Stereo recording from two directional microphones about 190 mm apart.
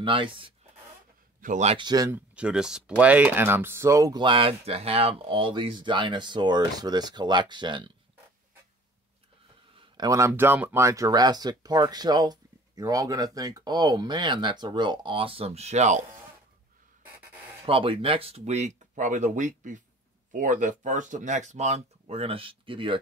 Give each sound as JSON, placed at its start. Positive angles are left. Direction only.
{"t": 0.0, "sound": "speech", "side_deg": -25}
{"t": 1.4, "sound": "speech", "side_deg": -40}
{"t": 9.8, "sound": "speech", "side_deg": -20}
{"t": 17.6, "sound": "speech", "side_deg": -30}